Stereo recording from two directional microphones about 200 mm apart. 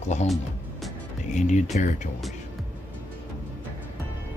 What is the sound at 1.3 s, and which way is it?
Speech, 35° left (ahead or behind).